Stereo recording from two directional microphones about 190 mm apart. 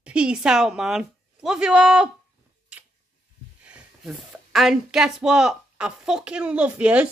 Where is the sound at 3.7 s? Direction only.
5° right (ahead or behind).